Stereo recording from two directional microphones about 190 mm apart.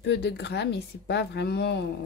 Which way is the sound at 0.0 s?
60° left (ahead or behind).